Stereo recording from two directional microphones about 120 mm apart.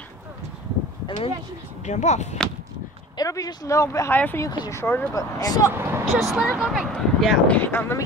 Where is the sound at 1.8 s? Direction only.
75° left (ahead or behind).